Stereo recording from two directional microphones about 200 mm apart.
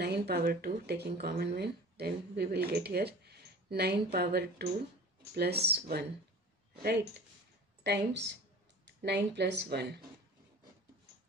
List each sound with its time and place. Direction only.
0.0 s speech: 55° right (ahead or behind)